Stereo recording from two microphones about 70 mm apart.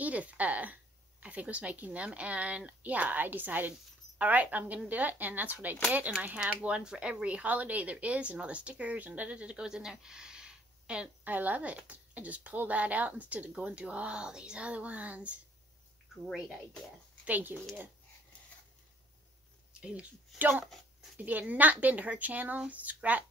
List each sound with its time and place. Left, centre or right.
0.0 s a woman's voice: right
11.2 s speech: right
16.3 s speech: centre
17.2 s speech: right
19.8 s speech: centre